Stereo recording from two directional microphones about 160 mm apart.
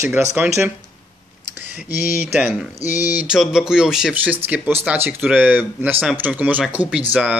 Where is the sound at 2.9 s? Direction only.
20° left (ahead or behind).